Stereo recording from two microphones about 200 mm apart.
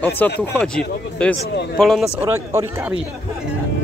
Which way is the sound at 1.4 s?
55° left (ahead or behind).